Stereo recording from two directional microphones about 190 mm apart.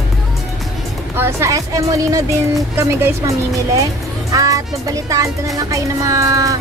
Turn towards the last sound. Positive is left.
turn(degrees=-15)  # may be behind; listen again after turning